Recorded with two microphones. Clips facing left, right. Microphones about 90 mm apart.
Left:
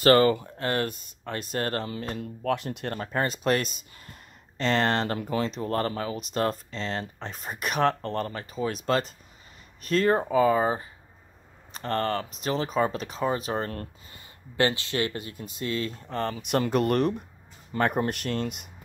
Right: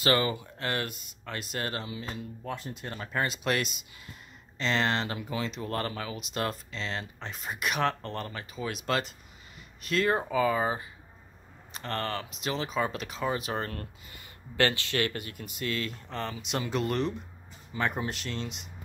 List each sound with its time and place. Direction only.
0.0 s speech: 45° left (ahead or behind)
2.4 s speech: 75° left (ahead or behind)
3.0 s speech: 40° left (ahead or behind)